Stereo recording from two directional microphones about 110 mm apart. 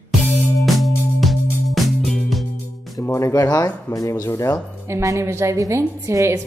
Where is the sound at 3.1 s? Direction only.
25° left (ahead or behind).